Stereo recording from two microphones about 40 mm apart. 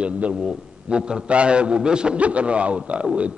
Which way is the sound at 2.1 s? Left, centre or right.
Right.